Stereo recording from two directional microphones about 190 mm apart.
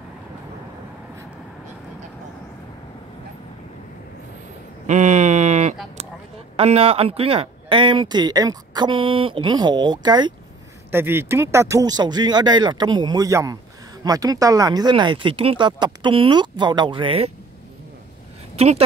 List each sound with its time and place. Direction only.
4.8 s a sound: 40° right (ahead or behind)
6.5 s speech: 30° right (ahead or behind)
10.9 s speech: 10° right (ahead or behind); by 17.3 s 30° right (ahead or behind)
18.6 s speech: 35° right (ahead or behind)